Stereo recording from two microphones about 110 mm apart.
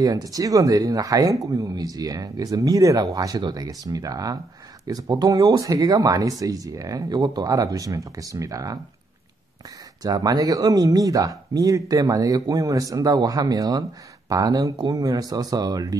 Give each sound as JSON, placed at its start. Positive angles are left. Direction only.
{"t": 0.0, "sound": "speech", "side_deg": -35}
{"t": 10.0, "sound": "speech", "side_deg": -35}